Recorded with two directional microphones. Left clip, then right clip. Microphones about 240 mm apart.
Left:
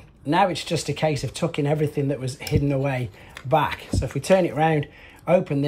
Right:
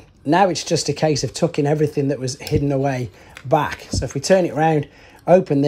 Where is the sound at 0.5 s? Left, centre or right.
Right.